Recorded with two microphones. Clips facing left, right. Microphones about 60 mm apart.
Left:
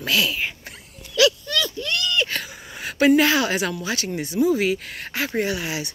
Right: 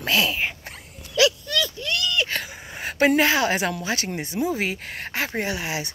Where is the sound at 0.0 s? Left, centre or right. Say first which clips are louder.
Even; right.